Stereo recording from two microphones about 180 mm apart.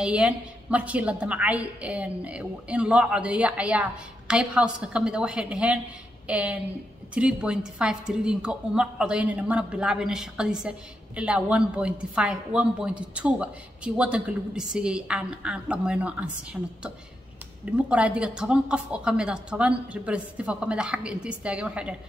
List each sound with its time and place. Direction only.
0.0 s a woman's voice: 5° right (ahead or behind)
17.6 s a woman's voice: 5° right (ahead or behind)